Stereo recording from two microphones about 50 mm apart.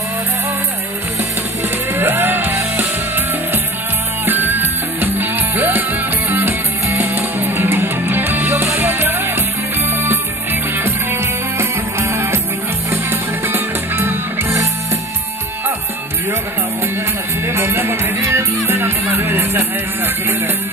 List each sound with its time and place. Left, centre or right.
2.0 s music: right
4.3 s music: right
8.5 s music: right
8.7 s music: right
10.8 s music: right
17.5 s music: right